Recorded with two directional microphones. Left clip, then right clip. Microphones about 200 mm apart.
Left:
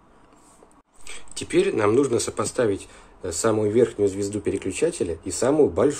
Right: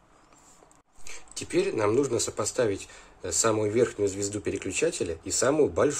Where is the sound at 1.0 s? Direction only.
5° right (ahead or behind).